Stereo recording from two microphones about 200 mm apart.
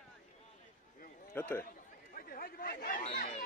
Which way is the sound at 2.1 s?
45° left (ahead or behind).